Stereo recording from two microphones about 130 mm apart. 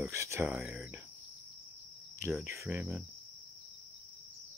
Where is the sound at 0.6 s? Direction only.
5° right (ahead or behind).